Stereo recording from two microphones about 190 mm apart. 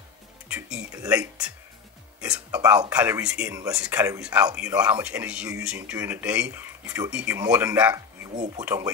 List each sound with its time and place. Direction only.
0.5 s speech: 5° right (ahead or behind)
2.1 s speech: 5° right (ahead or behind)